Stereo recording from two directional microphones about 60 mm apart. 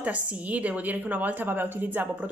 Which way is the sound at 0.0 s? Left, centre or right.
Right.